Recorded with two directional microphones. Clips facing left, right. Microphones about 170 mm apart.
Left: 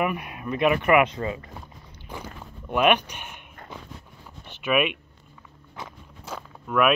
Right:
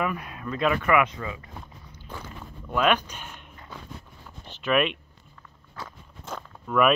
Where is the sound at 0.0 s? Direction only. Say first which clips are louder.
Left 2 dB; 15° left (ahead or behind).